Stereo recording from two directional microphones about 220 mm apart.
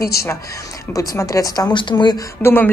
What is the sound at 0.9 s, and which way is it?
Speech, 15° left (ahead or behind).